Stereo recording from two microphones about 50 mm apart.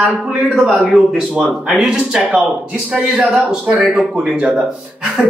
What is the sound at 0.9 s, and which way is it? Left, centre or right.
Speech, centre.